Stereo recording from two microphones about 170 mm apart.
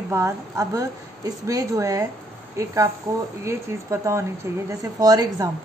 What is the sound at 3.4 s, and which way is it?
A woman's voice, 15° right (ahead or behind).